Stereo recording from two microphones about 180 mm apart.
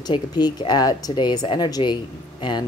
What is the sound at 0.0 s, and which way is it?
Speech, 25° left (ahead or behind).